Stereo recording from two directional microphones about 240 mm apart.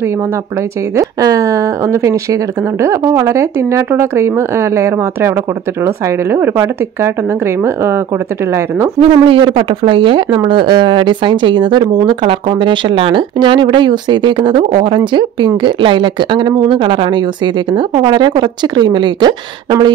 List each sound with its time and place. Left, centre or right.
0.9 s speech: centre
9.0 s speech: right